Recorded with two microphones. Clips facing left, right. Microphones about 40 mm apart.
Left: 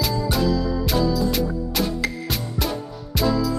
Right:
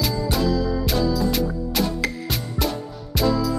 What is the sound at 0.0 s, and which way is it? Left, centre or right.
Music, centre.